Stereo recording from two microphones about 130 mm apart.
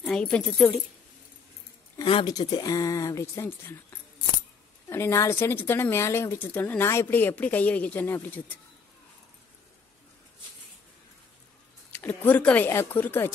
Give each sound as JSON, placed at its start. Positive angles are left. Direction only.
{"t": 0.0, "sound": "speech", "side_deg": 5}
{"t": 2.2, "sound": "speech", "side_deg": 30}
{"t": 4.8, "sound": "a woman's voice", "side_deg": 20}
{"t": 11.9, "sound": "a woman's voice", "side_deg": 15}